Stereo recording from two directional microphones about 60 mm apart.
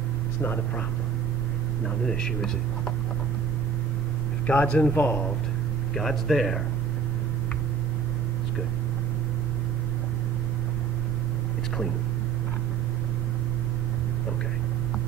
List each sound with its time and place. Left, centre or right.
4.5 s speech: left
5.9 s speech: centre